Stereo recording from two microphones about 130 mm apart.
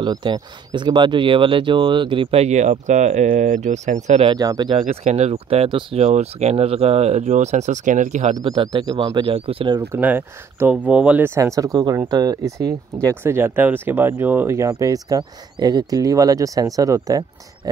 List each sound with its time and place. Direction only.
0.0 s speech: 35° right (ahead or behind)
2.4 s speech: 60° right (ahead or behind)
4.3 s speech: 30° right (ahead or behind)
5.0 s speech: 60° right (ahead or behind); by 5.9 s 40° right (ahead or behind)
5.9 s speech: 60° right (ahead or behind)
8.4 s speech: 35° right (ahead or behind)
9.8 s speech: 15° right (ahead or behind)